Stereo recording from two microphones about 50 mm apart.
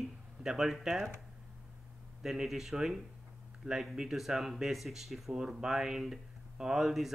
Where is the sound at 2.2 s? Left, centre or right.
Centre.